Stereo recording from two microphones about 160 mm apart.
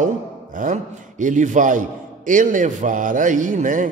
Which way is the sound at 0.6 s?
55° right (ahead or behind).